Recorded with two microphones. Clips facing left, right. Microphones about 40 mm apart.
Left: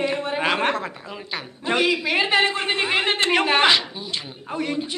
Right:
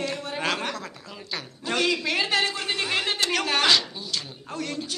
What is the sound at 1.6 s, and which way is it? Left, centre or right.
A woman's voice, centre.